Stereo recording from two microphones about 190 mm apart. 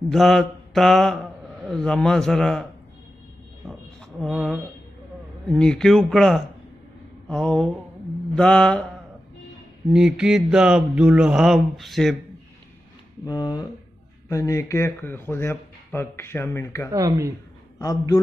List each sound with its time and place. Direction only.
0.1 s mantra: centre (ahead or behind)
4.2 s mantra: centre (ahead or behind)
9.9 s mantra: 5° right (ahead or behind)
13.2 s speech: 20° left (ahead or behind)
16.9 s speech: 15° right (ahead or behind)
17.7 s a man's voice: 20° left (ahead or behind)